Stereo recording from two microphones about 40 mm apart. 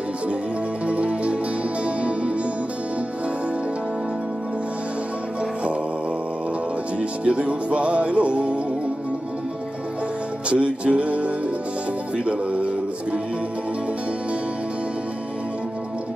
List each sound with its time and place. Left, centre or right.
0.8 s music: right
7.0 s music: right
10.5 s music: right